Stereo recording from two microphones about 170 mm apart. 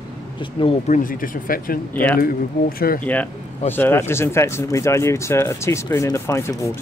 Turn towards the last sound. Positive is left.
turn(degrees=15)  # may be behind; listen again after turning